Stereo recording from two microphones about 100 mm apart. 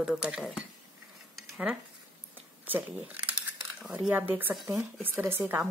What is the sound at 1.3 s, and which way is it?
Dishes, centre (ahead or behind).